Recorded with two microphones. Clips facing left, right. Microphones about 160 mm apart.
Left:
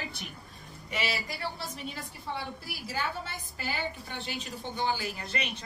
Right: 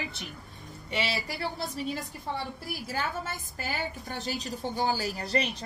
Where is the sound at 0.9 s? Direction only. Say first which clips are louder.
Right 2 dB; 30° right (ahead or behind).